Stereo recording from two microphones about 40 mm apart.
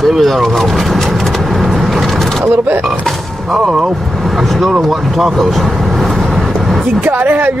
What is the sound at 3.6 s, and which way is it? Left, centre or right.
Speech, centre.